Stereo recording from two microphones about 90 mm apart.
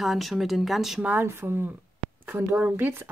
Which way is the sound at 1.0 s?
15° right (ahead or behind).